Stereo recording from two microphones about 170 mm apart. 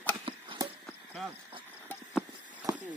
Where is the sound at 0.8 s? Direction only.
Centre (ahead or behind).